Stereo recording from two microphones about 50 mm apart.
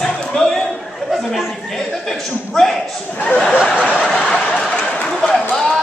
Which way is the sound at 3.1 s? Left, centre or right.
Left.